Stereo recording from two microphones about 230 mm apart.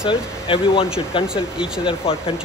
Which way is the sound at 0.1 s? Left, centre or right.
Left.